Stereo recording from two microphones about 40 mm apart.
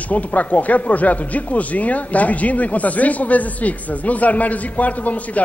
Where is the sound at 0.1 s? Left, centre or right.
Left.